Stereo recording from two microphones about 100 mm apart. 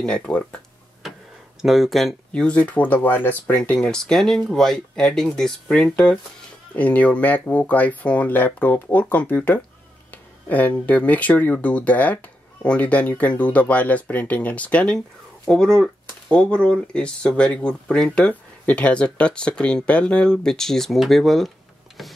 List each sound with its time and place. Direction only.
0.0 s speech: 10° left (ahead or behind)
1.6 s speech: centre (ahead or behind); by 9.6 s 15° left (ahead or behind)
10.1 s a sound: 15° left (ahead or behind)
10.9 s speech: 15° left (ahead or behind)